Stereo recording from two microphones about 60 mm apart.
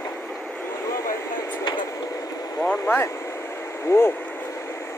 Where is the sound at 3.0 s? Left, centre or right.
Left.